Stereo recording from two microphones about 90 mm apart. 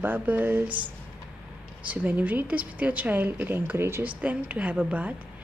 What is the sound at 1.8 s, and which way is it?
A woman's voice, 15° right (ahead or behind).